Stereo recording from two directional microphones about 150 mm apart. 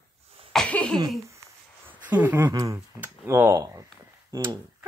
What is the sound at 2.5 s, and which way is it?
Speech, 25° right (ahead or behind).